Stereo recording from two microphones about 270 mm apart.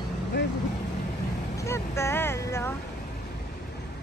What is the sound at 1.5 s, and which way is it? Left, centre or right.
Speech, centre.